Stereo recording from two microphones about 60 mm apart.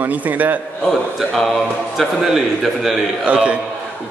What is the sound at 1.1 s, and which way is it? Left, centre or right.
A man's voice, centre.